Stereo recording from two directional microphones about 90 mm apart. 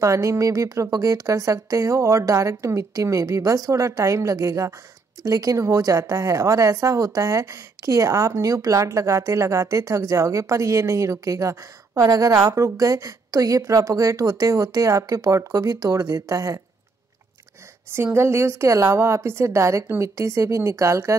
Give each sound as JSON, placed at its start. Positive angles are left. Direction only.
{"t": 0.0, "sound": "a woman's voice", "side_deg": -35}
{"t": 17.9, "sound": "a woman's voice", "side_deg": -25}